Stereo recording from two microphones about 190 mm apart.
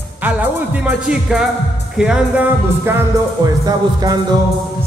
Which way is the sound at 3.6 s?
20° right (ahead or behind).